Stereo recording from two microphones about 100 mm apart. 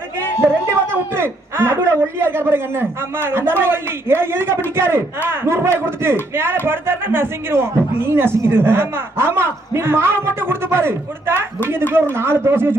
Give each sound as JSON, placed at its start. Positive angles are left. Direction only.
{"t": 0.9, "sound": "a man's voice", "side_deg": -25}